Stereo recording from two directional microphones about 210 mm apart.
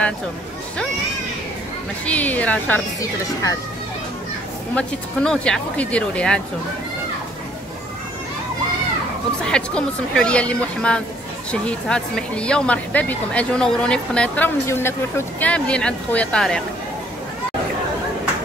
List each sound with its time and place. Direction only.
2.0 s speech: 5° left (ahead or behind)
4.7 s speech: 5° left (ahead or behind)
9.4 s speech: 5° left (ahead or behind)